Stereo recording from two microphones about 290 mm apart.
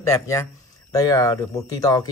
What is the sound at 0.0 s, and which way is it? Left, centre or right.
Speech, centre.